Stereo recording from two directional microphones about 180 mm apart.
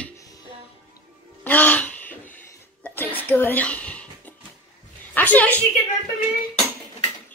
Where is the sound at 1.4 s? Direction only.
10° left (ahead or behind).